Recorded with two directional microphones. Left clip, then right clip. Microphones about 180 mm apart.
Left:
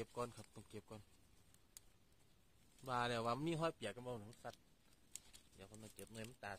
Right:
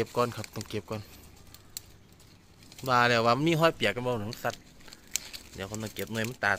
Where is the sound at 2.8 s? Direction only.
Centre (ahead or behind).